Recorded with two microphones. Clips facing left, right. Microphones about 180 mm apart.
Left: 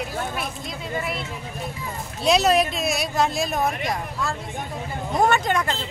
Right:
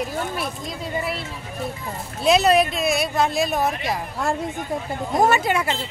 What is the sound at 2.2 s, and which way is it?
Speech, centre (ahead or behind).